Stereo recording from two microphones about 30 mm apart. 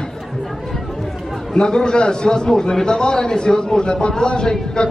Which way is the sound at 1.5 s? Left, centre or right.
Left.